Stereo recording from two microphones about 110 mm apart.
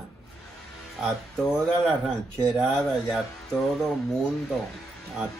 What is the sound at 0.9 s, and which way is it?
Speech, centre (ahead or behind).